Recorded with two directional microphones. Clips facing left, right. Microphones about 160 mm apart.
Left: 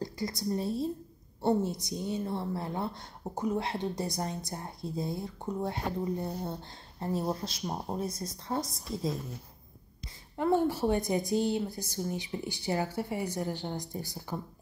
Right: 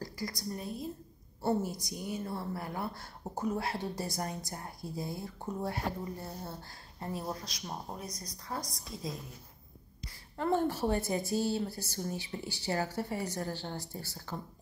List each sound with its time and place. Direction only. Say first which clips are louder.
0.0 s speech: left 5 dB; 25° left (ahead or behind)
3.3 s speech: left 2 dB; 10° left (ahead or behind)
3.5 s speech: left 3 dB; 20° left (ahead or behind)
10.3 s speech: left 3 dB; 15° left (ahead or behind)